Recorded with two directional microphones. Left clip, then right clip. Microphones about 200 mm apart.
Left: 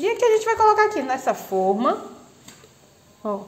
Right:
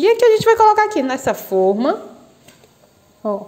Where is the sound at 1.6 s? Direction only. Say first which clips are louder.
Right 5 dB; 30° right (ahead or behind).